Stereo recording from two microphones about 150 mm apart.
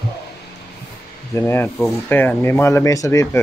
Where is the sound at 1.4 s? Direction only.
15° left (ahead or behind).